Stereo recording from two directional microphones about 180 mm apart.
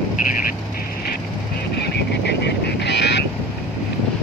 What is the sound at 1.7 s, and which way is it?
Duck, 65° left (ahead or behind).